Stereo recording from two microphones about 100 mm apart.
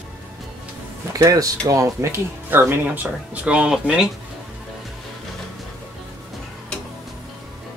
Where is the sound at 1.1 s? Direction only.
35° right (ahead or behind); by 4.1 s 5° right (ahead or behind).